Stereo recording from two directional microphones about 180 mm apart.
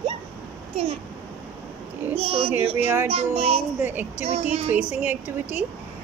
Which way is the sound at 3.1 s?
35° right (ahead or behind).